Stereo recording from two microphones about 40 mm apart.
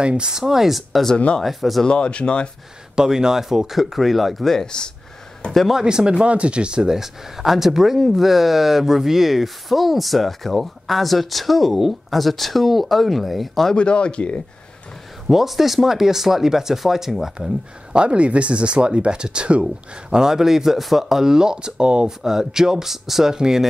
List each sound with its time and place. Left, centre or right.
0.0 s speech: right; by 1.0 s centre
1.1 s speech: left
1.4 s speech: centre
1.9 s speech: left
3.0 s speech: centre
4.6 s speech: left
5.7 s speech: centre
6.2 s speech: right
7.0 s speech: centre
13.7 s speech: left
15.2 s speech: centre
17.9 s speech: right
22.2 s speech: centre
23.3 s speech: centre